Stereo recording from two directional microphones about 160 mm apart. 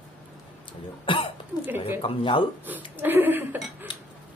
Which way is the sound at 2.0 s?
30° left (ahead or behind).